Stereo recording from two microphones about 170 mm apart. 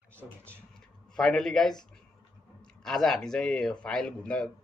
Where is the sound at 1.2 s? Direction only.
5° left (ahead or behind).